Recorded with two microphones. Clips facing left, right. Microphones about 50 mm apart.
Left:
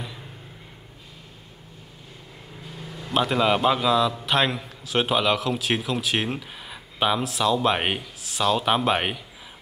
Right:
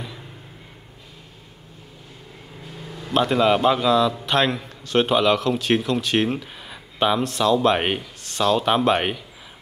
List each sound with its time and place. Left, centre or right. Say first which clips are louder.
2.8 s a man's voice: right 3 dB; centre